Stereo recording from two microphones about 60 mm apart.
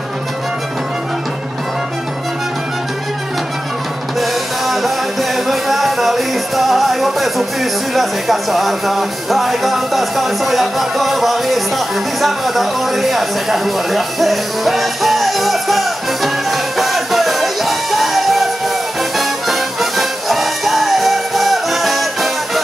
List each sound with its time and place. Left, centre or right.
4.2 s music: centre
7.9 s speech: centre
19.1 s music: centre